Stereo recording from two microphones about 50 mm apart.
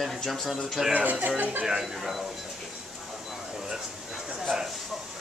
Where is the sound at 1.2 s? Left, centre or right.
Right.